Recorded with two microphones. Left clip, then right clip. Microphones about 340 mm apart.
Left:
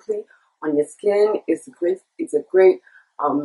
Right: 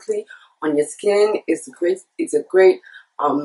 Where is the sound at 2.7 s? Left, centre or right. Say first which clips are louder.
Right 1 dB; centre.